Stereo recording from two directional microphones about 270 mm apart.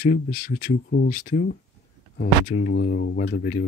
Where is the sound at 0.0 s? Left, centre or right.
Left.